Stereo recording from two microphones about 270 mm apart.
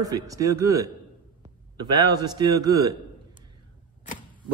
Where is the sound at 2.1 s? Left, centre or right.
Centre.